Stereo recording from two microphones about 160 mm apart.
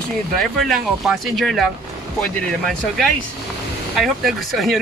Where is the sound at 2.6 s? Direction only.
Centre (ahead or behind).